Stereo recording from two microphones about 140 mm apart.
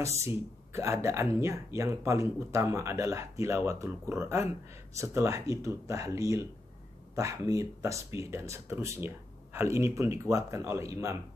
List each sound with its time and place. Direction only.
0.0 s speech: 20° right (ahead or behind)